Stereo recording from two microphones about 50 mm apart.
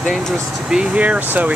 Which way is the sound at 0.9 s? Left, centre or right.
Right.